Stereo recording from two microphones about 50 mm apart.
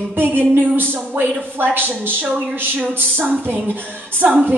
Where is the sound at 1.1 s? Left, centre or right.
Right.